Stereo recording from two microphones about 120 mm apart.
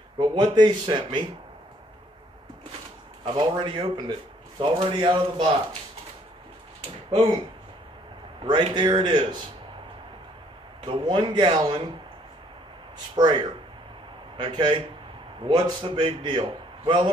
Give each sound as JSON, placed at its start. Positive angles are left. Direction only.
{"t": 0.2, "sound": "a man's voice", "side_deg": -40}
{"t": 3.3, "sound": "a man's voice", "side_deg": -45}
{"t": 7.1, "sound": "speech", "side_deg": -35}
{"t": 8.5, "sound": "a man's voice", "side_deg": -40}
{"t": 10.8, "sound": "a man's voice", "side_deg": -40}
{"t": 13.1, "sound": "a man's voice", "side_deg": -40}